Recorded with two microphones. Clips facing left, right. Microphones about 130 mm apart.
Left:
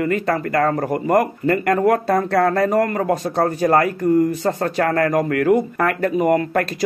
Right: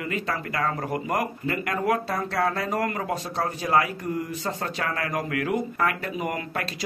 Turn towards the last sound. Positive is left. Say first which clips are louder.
# left 12 dB
turn(degrees=45)  # may be behind; listen again after turning